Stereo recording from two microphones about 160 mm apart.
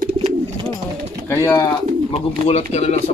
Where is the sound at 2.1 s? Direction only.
40° left (ahead or behind).